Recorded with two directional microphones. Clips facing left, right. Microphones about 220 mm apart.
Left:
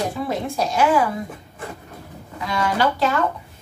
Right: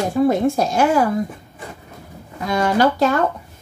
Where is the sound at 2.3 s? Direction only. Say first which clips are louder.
Right 5 dB; 45° right (ahead or behind).